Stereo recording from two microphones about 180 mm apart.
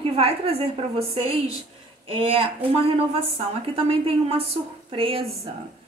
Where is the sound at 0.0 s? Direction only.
30° right (ahead or behind).